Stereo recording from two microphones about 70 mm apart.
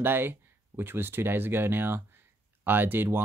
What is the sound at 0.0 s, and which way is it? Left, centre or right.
Speech, right.